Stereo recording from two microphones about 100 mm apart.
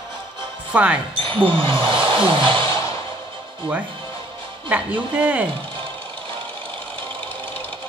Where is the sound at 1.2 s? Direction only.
60° right (ahead or behind).